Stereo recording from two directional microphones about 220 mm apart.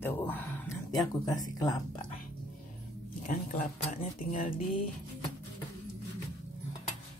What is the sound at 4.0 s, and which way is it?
Speech, 25° left (ahead or behind).